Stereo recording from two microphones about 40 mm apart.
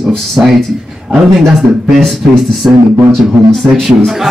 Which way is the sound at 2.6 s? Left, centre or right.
Right.